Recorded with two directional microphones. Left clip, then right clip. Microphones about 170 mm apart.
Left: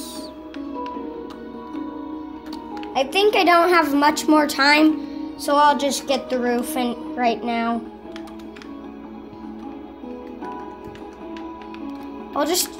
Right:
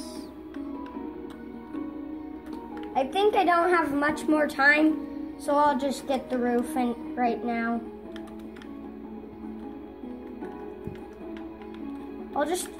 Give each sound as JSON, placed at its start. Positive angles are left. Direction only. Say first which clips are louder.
{"t": 2.9, "sound": "a woman's voice", "louder": "left 6 dB", "side_deg": 60}